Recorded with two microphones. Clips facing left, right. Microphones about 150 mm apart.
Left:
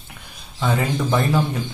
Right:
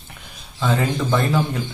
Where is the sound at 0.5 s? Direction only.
10° left (ahead or behind).